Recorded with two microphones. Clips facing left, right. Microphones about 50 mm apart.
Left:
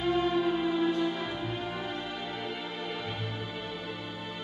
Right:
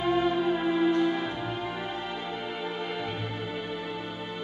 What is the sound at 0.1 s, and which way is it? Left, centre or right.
Music, right.